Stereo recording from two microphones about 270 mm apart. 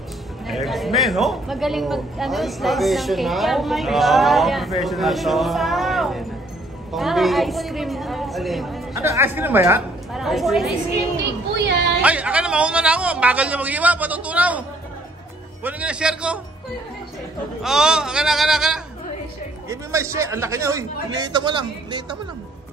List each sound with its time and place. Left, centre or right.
0.5 s speech: centre
8.9 s a woman's voice: centre
11.5 s a sound: right
12.0 s speech: centre
15.6 s speech: centre
17.6 s a man's voice: centre